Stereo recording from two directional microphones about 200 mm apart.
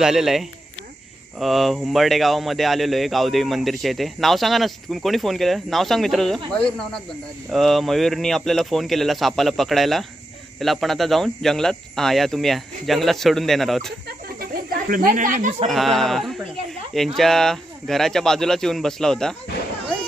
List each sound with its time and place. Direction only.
0.0 s speech: centre (ahead or behind)
14.2 s a sound: 45° right (ahead or behind)
15.7 s speech: centre (ahead or behind)